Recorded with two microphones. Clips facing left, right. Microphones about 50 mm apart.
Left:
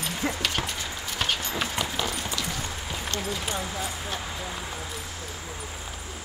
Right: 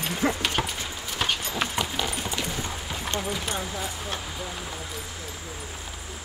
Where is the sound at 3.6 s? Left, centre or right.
Centre.